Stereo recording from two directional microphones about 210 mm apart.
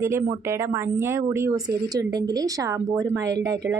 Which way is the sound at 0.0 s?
15° right (ahead or behind).